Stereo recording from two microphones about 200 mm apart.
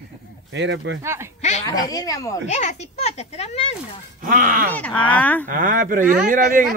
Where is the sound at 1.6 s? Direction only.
20° left (ahead or behind).